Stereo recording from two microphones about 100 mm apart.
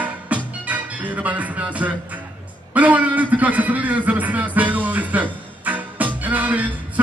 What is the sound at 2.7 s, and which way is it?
A man's voice, 15° right (ahead or behind).